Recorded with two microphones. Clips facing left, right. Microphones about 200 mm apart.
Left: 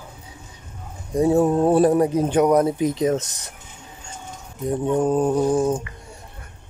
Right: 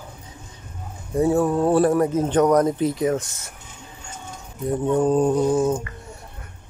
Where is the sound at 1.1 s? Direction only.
20° left (ahead or behind).